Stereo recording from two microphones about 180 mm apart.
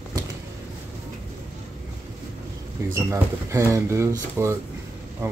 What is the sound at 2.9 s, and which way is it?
Speech, 15° right (ahead or behind).